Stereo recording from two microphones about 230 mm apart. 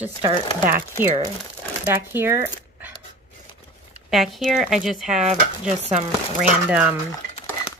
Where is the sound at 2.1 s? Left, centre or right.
Centre.